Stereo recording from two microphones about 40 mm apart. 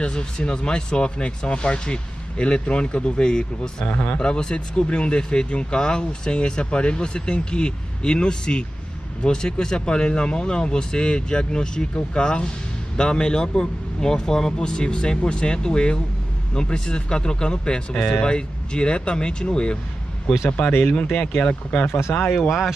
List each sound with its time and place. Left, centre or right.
0.0 s speech: left
3.8 s speech: left
4.2 s speech: left
20.4 s speech: left
22.5 s speech: centre